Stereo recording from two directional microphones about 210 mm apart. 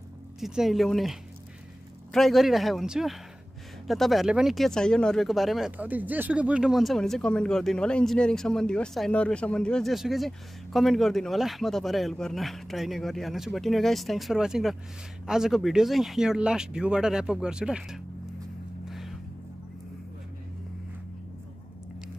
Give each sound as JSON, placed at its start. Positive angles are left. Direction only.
{"t": 0.4, "sound": "speech", "side_deg": 0}
{"t": 2.1, "sound": "speech", "side_deg": 0}
{"t": 18.9, "sound": "vehicle", "side_deg": 0}